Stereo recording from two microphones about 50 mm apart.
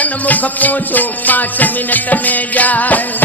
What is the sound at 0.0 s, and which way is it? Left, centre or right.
Music, left.